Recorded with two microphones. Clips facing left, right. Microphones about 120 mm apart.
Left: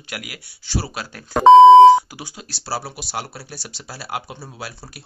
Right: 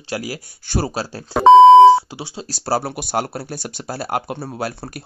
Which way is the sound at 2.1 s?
30° right (ahead or behind).